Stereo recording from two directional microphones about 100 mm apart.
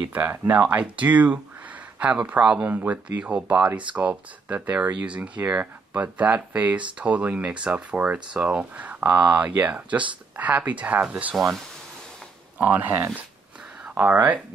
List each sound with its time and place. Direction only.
0.1 s speech: 15° right (ahead or behind)
12.5 s speech: 15° right (ahead or behind)